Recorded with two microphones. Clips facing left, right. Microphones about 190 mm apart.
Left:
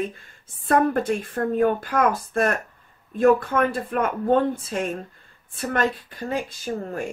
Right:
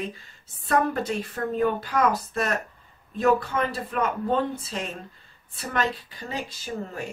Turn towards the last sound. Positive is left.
turn(degrees=45)  # may be behind; listen again after turning